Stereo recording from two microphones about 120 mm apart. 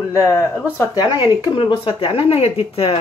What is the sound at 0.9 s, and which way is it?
Speech, 35° left (ahead or behind).